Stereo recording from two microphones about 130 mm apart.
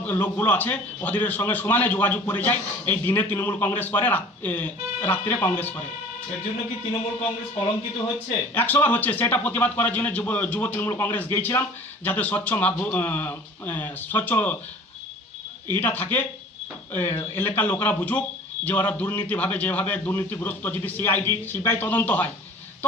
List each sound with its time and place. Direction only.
0.0 s speech: 15° left (ahead or behind)
8.5 s speech: 15° left (ahead or behind)
15.7 s speech: 15° left (ahead or behind)